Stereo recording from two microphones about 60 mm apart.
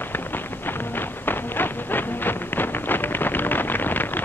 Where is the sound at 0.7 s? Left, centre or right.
Left.